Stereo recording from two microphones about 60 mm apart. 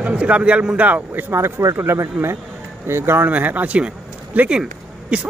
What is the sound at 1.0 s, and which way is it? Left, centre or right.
Speech, right.